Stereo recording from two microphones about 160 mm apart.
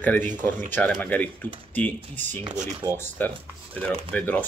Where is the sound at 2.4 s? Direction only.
45° right (ahead or behind).